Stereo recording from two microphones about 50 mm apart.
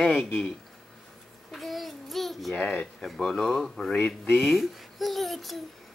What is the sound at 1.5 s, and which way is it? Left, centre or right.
Speech, centre.